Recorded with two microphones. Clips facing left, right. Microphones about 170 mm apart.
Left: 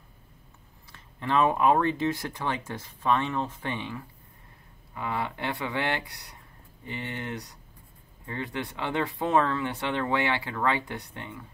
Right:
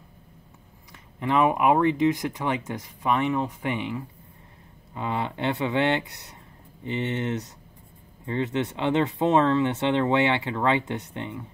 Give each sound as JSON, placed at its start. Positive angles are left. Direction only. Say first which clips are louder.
{"t": 0.9, "sound": "speech", "louder": "right 2 dB", "side_deg": -15}